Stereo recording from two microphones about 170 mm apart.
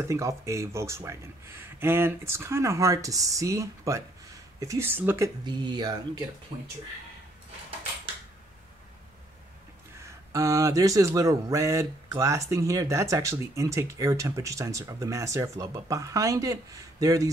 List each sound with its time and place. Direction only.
0.1 s speech: 20° right (ahead or behind)
9.9 s speech: 15° right (ahead or behind)